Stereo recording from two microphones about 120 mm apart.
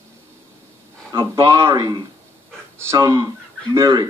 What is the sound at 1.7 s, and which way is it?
Speech, 35° right (ahead or behind).